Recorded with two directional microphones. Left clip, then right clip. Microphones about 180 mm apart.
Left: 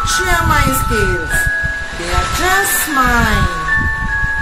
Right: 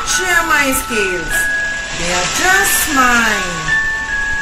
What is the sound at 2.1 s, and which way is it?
Speech, 45° left (ahead or behind).